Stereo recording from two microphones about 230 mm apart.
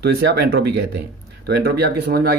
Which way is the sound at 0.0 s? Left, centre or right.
Right.